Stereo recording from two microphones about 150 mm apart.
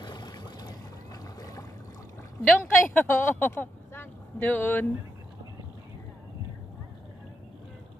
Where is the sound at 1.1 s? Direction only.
25° left (ahead or behind).